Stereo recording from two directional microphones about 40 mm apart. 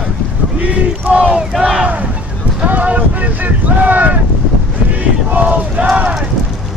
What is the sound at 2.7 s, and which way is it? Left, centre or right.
Wind noise, right.